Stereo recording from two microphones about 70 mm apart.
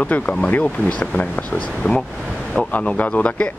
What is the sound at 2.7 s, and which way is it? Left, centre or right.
Speech, left.